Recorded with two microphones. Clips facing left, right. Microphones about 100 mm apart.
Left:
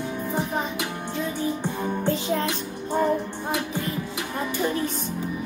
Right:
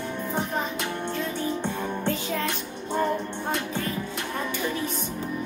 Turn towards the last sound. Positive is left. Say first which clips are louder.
# left 1 dB
turn(degrees=5)  # may be behind; listen again after turning